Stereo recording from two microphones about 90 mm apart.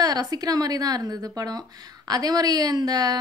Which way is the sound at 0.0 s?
45° right (ahead or behind).